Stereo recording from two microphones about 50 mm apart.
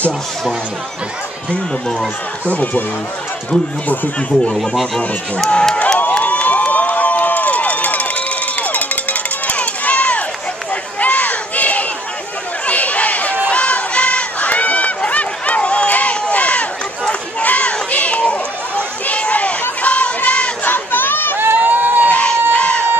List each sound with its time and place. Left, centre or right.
2.5 s speech: left
3.8 s speech: left
4.6 s speech: centre
5.5 s crowd: centre
5.9 s crowd: left
10.7 s run: left
12.6 s a sound: left
13.5 s crowd: left
17.1 s run: left
19.8 s crowd: left
20.6 s a sound: left
21.4 s crowd: right
22.1 s a sound: left